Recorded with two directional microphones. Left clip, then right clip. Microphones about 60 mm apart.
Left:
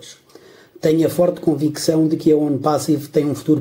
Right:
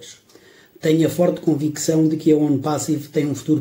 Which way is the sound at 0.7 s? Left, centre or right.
Left.